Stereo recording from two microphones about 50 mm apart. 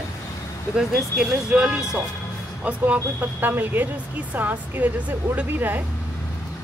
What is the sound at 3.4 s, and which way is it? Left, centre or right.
Speech, right.